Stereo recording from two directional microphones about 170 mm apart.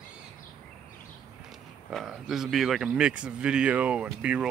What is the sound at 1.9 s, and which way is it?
Speech, centre (ahead or behind).